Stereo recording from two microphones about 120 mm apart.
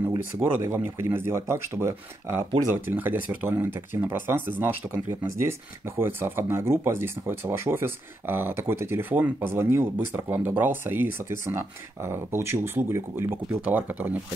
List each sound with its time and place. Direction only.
0.4 s speech: 15° right (ahead or behind)